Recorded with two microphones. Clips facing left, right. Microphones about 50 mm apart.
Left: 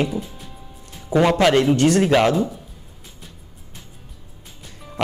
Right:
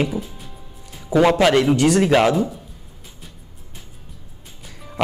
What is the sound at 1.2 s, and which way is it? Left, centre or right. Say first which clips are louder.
A man's voice: right 1 dB; centre.